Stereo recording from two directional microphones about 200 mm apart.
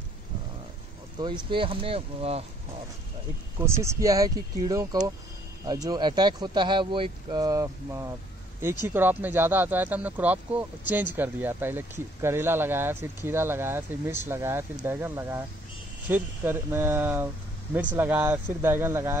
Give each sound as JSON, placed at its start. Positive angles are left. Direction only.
{"t": 1.2, "sound": "speech", "side_deg": -25}
{"t": 3.5, "sound": "speech", "side_deg": -15}